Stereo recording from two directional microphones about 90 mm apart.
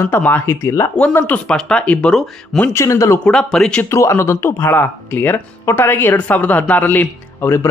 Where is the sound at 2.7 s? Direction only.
35° left (ahead or behind).